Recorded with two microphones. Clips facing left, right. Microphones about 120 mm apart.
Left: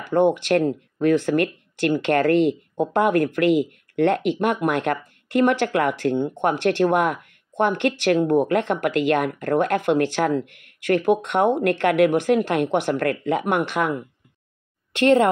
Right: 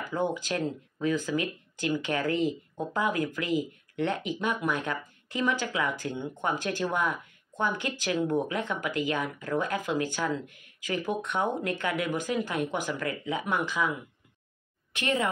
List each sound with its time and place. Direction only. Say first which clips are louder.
0.0 s speech: left 11 dB; 70° left (ahead or behind)